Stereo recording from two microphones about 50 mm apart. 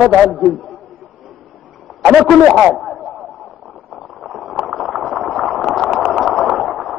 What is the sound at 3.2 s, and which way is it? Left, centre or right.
Radio, left.